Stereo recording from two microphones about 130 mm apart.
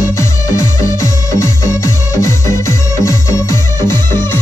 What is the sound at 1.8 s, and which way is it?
Music, 25° left (ahead or behind).